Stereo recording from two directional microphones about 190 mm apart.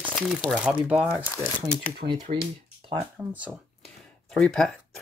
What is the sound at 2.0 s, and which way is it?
Speech, 35° right (ahead or behind).